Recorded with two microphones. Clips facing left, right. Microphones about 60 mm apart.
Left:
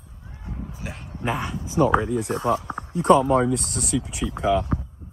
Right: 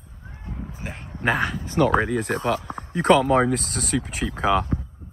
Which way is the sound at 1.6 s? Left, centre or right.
Right.